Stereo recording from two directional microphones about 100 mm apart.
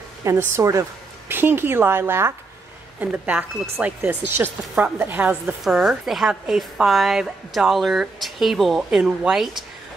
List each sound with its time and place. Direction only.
0.4 s a woman's voice: 30° right (ahead or behind)
5.6 s a woman's voice: 5° right (ahead or behind)